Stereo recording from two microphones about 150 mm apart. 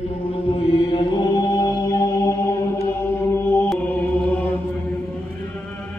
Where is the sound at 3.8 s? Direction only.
10° left (ahead or behind).